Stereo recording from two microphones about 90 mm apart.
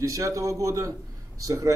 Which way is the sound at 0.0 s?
35° right (ahead or behind).